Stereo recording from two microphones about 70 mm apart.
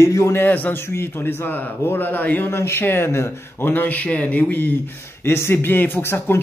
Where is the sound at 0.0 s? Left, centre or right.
Left.